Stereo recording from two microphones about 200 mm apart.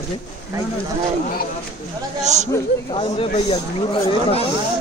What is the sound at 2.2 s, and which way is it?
Speech, 35° right (ahead or behind).